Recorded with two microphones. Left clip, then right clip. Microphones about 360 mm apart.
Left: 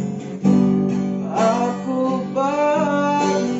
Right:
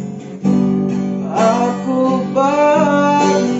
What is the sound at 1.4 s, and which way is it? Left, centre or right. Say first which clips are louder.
Music: right 4 dB; right.